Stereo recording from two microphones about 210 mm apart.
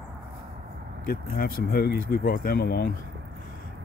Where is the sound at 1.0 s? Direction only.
45° left (ahead or behind).